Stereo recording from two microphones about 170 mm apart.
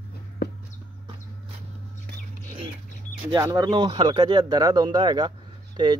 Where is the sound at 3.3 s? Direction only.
20° right (ahead or behind).